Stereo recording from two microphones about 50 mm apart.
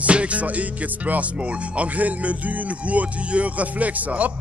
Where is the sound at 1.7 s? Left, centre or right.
Right.